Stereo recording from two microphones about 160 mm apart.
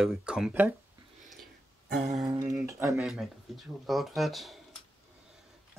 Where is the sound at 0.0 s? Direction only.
5° right (ahead or behind).